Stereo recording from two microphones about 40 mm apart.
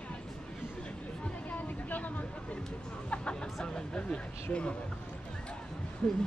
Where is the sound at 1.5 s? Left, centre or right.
Left.